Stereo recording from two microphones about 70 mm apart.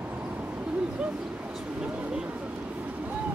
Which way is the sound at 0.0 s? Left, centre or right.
Centre.